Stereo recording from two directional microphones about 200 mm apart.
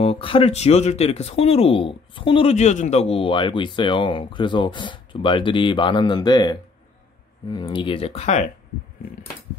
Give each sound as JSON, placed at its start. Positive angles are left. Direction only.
{"t": 0.0, "sound": "speech", "side_deg": 25}